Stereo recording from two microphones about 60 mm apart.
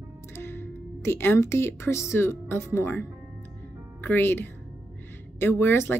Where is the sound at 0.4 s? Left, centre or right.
Left.